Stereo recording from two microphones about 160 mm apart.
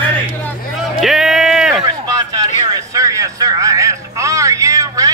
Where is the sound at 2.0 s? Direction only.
25° right (ahead or behind).